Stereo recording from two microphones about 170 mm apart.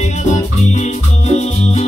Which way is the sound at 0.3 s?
45° left (ahead or behind).